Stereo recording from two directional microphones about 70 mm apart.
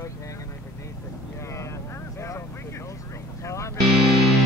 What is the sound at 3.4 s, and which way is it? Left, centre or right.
Speech, left.